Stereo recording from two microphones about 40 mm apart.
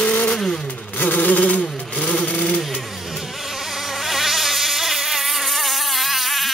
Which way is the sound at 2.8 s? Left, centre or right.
Centre.